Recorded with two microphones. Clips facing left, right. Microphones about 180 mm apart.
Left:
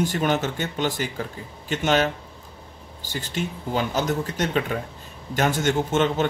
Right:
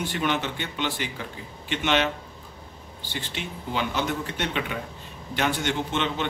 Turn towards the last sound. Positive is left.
turn(degrees=45)  # may be behind; listen again after turning